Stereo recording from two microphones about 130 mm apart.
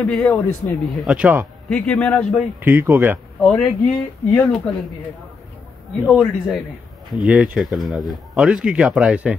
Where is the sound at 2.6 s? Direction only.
20° right (ahead or behind).